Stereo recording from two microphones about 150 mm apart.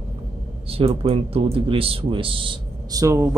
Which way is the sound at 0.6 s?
40° right (ahead or behind).